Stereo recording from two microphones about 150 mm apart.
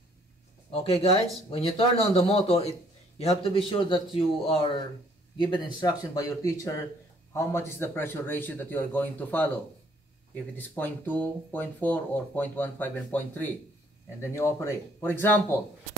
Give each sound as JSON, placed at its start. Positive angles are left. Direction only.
{"t": 1.5, "sound": "a man's voice", "side_deg": 40}